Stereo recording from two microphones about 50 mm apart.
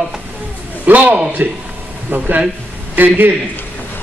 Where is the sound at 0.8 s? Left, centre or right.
Right.